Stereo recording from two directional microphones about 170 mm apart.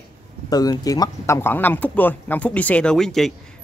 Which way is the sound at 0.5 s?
20° left (ahead or behind).